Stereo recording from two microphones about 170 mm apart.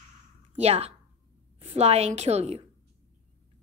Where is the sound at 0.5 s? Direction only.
40° right (ahead or behind).